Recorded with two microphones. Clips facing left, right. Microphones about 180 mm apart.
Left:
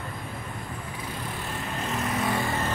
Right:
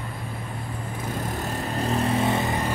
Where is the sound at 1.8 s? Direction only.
30° right (ahead or behind).